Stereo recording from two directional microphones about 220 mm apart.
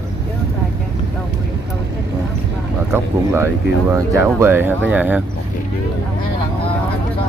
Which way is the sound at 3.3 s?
10° right (ahead or behind).